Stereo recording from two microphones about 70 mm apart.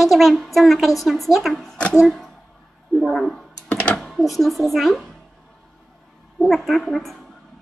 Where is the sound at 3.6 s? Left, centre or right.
Centre.